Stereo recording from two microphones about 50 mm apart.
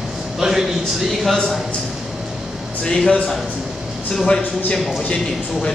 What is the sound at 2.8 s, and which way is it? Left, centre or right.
Speech, centre.